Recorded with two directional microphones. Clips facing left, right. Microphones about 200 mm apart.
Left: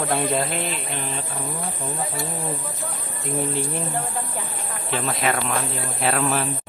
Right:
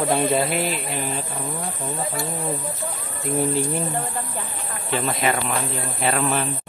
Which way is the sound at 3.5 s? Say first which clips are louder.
Right 2 dB; 5° right (ahead or behind).